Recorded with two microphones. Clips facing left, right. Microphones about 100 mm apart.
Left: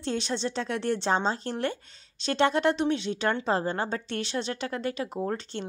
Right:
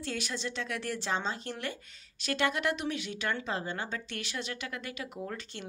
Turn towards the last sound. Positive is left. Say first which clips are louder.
# left 8 dB
turn(degrees=30)  # may be behind; listen again after turning